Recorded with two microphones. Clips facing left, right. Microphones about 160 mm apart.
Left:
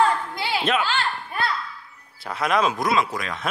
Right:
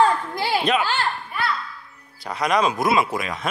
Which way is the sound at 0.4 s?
40° right (ahead or behind).